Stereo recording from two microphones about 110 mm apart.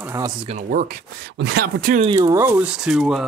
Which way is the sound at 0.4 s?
70° right (ahead or behind).